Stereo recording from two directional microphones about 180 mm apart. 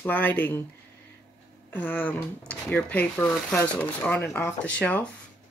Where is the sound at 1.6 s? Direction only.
10° left (ahead or behind).